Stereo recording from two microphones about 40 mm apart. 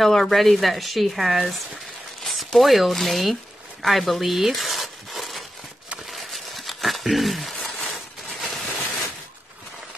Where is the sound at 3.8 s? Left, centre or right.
Centre.